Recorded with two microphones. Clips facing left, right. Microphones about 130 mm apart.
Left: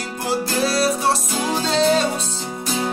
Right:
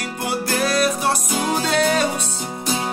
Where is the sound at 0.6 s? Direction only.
30° left (ahead or behind).